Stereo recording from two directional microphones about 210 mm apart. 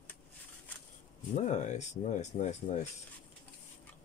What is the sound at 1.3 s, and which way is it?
Speech, 35° left (ahead or behind).